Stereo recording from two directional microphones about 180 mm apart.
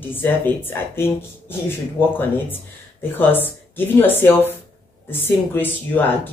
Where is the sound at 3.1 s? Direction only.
10° left (ahead or behind).